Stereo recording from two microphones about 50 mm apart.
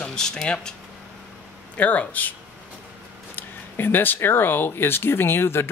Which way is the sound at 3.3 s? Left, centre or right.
Left.